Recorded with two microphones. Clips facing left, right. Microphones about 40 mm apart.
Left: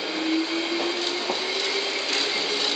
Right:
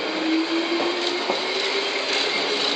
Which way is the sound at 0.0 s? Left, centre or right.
Centre.